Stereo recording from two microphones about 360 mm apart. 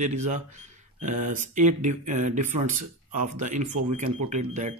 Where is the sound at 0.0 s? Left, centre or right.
Centre.